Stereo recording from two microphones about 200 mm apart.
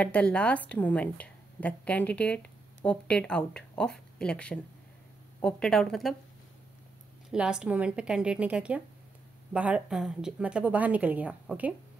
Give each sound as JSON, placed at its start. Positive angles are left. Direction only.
{"t": 0.0, "sound": "a woman's voice", "side_deg": 5}
{"t": 7.2, "sound": "a woman's voice", "side_deg": -5}